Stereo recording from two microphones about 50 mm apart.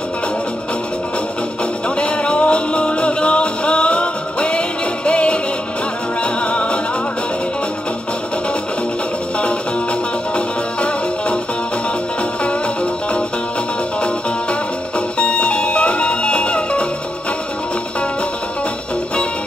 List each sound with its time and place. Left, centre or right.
2.0 s music: left
10.3 s music: left
15.1 s music: left